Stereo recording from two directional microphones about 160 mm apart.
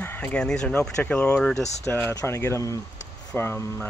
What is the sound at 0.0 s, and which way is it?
Speech, 10° left (ahead or behind).